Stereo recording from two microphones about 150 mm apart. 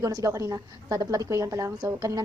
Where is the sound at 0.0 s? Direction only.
20° right (ahead or behind).